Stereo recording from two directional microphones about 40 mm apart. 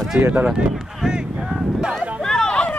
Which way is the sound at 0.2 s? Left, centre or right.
Right.